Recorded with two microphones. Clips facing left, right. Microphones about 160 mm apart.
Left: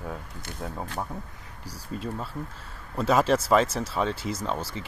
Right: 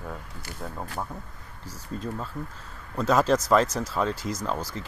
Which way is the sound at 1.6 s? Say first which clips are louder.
Even; 10° left (ahead or behind).